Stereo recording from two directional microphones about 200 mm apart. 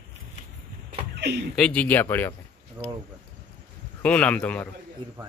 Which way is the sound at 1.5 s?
5° left (ahead or behind).